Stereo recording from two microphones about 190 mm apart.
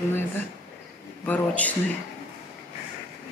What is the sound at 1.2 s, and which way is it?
Speech, 10° left (ahead or behind).